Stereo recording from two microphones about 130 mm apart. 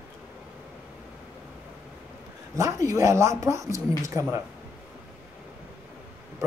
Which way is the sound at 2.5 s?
25° right (ahead or behind).